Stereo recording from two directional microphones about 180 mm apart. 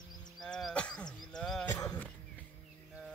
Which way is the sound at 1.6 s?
15° left (ahead or behind).